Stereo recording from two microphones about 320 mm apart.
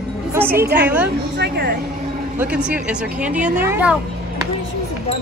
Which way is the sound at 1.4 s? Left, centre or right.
Right.